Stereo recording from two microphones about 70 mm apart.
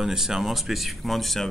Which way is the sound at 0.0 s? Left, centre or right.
Centre.